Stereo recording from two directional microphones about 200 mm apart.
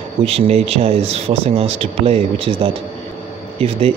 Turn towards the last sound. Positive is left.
turn(degrees=-30)  # may be behind; listen again after turning